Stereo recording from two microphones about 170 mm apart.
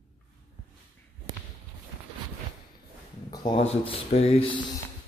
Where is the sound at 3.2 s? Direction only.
25° left (ahead or behind).